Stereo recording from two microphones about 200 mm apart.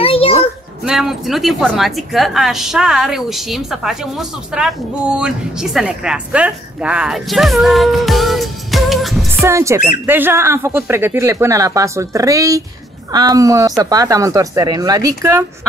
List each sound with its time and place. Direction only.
0.0 s a sound: 30° left (ahead or behind)
0.8 s a woman's voice: centre (ahead or behind)
9.4 s speech: 15° right (ahead or behind)